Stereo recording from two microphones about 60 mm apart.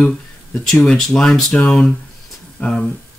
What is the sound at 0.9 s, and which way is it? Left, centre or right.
Speech, centre.